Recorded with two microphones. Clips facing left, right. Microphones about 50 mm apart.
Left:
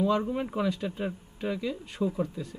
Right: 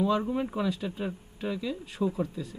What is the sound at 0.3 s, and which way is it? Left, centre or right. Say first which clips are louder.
Speech: even; centre.